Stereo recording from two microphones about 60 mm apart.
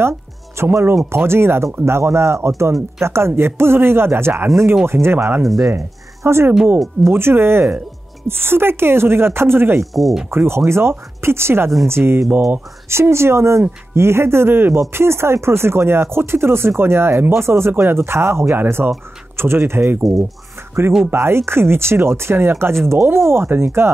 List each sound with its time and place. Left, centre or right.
0.6 s speech: right
5.4 s speech: centre
5.7 s speech: right
9.9 s speech: centre
10.3 s speech: right
12.9 s speech: right
21.1 s speech: right